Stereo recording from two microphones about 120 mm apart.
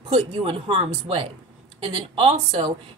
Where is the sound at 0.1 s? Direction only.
55° right (ahead or behind).